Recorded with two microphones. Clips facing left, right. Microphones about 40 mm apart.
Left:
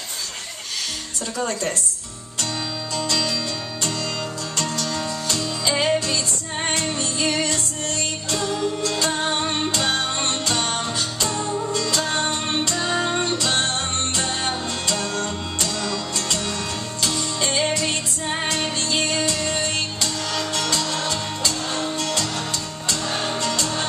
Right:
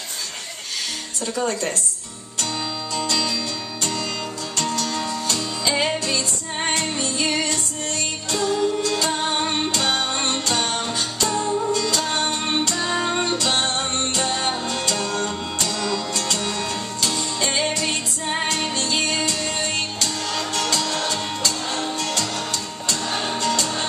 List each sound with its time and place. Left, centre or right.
1.4 s a woman's voice: centre
3.1 s music: centre
4.6 s music: centre
11.3 s music: centre
11.8 s music: centre